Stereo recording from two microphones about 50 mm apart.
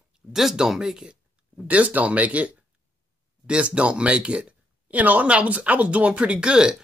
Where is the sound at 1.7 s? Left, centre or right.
Right.